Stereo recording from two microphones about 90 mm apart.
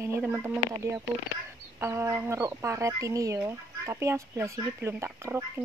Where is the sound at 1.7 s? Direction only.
30° right (ahead or behind).